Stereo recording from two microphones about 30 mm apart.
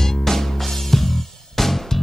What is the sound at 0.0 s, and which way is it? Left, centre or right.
Music, centre.